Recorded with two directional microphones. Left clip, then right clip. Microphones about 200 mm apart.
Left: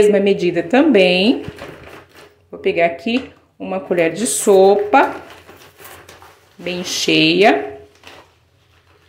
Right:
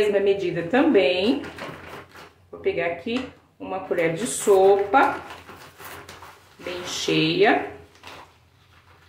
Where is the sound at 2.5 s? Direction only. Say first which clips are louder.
Left 9 dB; 45° left (ahead or behind).